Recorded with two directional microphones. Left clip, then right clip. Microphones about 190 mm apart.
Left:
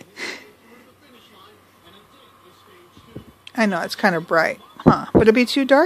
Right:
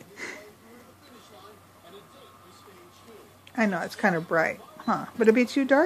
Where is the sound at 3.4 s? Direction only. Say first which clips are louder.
Left 6 dB; 45° left (ahead or behind).